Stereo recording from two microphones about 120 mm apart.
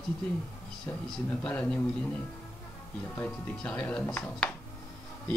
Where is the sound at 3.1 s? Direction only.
10° left (ahead or behind).